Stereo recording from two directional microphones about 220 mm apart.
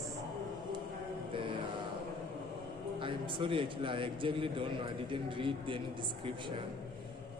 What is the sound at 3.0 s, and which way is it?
A man's voice, 25° right (ahead or behind).